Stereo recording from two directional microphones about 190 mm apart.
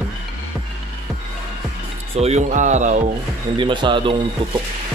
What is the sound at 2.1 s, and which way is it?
Speech, 35° right (ahead or behind).